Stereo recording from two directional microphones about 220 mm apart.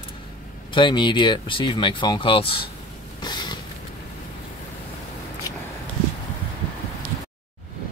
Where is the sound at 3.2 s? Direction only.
20° left (ahead or behind).